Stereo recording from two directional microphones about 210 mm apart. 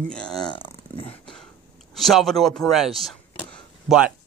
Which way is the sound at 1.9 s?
Centre (ahead or behind).